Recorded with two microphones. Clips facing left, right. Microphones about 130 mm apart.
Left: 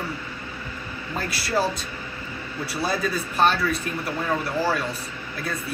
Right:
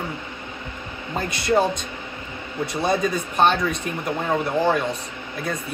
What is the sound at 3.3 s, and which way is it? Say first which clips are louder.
Speech: right 2 dB; 5° left (ahead or behind).